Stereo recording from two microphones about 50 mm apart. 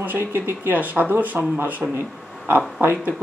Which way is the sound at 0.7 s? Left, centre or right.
Right.